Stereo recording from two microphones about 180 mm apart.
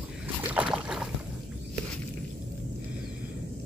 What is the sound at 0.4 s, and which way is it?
Boat, 10° right (ahead or behind).